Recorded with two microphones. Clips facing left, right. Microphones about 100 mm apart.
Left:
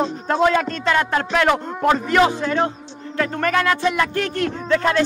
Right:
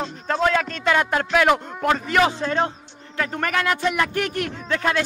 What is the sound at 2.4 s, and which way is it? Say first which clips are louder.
Speech: left 2 dB; 25° right (ahead or behind).